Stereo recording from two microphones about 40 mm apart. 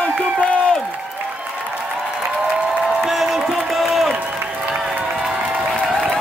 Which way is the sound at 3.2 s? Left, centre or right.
Centre.